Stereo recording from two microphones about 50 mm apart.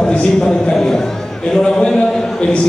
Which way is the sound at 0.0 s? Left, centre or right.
Centre.